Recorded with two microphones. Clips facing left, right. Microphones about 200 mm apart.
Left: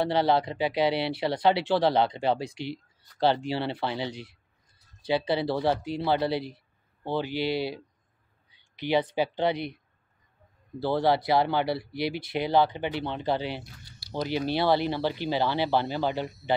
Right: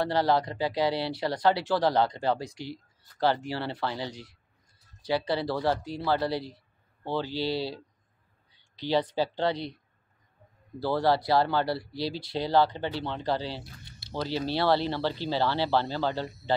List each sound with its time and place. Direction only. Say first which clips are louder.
0.0 s speech: left 1 dB; 25° left (ahead or behind)
10.8 s speech: left 1 dB; 20° left (ahead or behind)
13.8 s a sound: right 2 dB; 25° right (ahead or behind)
14.1 s speech: left 2 dB; 15° left (ahead or behind)